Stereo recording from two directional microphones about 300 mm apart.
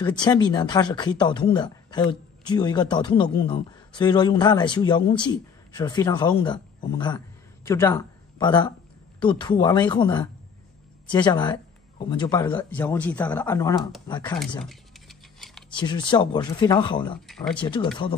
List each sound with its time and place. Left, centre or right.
0.0 s speech: centre
11.2 s speech: centre
14.6 s a sound: centre
15.7 s speech: centre